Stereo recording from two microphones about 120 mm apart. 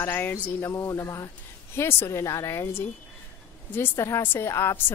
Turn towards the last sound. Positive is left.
turn(degrees=20)  # may be behind; listen again after turning